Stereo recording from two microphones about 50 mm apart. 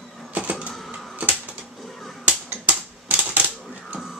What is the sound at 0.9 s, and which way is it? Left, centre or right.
Typewriter, right.